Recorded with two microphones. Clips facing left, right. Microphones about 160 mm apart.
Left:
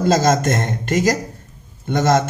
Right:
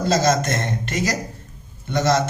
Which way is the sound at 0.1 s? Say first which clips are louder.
Left 2 dB; 45° left (ahead or behind).